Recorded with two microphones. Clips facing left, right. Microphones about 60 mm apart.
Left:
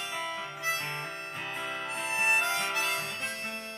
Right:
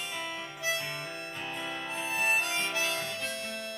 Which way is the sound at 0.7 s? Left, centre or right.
Left.